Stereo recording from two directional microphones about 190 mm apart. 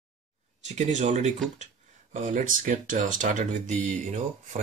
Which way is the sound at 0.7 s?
40° right (ahead or behind).